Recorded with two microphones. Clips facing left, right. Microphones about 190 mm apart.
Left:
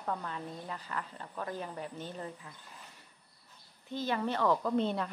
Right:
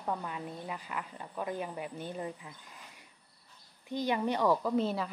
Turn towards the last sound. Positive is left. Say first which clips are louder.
# even
turn(degrees=-5)  # may be behind; listen again after turning